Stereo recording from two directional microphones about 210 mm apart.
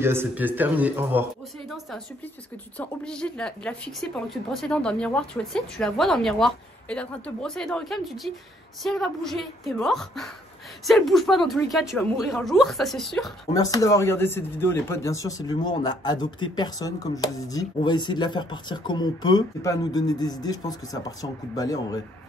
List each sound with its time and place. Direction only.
0.0 s speech: 10° right (ahead or behind)
2.8 s a woman's voice: 5° left (ahead or behind)
13.5 s speech: 15° left (ahead or behind)